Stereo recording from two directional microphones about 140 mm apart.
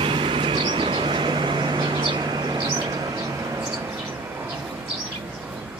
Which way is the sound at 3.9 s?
15° right (ahead or behind).